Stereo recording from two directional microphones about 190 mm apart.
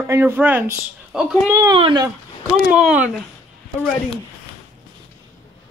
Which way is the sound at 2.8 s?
5° right (ahead or behind).